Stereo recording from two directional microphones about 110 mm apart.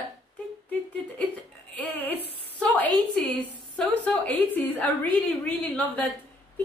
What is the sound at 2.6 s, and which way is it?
A woman's voice, 15° left (ahead or behind).